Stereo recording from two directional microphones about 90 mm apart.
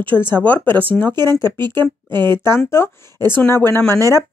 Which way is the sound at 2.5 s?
30° left (ahead or behind).